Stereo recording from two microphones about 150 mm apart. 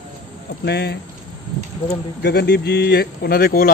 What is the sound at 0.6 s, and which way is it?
Speech, 90° left.